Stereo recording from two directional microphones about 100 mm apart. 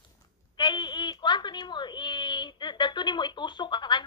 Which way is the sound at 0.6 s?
50° left (ahead or behind).